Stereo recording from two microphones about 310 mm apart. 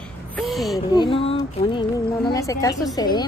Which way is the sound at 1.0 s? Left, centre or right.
Centre.